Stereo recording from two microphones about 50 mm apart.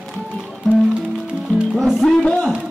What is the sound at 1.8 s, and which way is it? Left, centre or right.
Music, centre.